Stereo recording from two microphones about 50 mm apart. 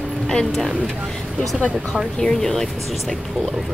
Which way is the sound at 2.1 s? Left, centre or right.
Centre.